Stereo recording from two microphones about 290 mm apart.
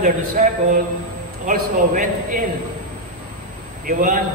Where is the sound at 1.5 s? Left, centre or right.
Right.